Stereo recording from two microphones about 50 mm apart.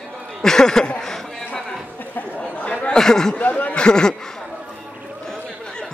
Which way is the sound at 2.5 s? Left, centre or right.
Left.